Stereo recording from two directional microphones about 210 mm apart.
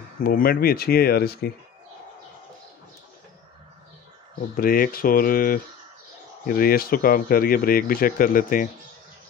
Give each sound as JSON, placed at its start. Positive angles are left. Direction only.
{"t": 0.2, "sound": "speech", "side_deg": 45}
{"t": 4.6, "sound": "speech", "side_deg": 45}